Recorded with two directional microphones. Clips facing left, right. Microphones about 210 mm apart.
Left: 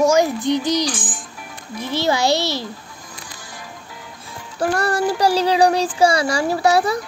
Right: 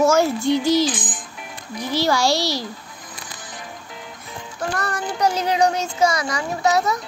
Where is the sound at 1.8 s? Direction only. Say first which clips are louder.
Even; 25° left (ahead or behind).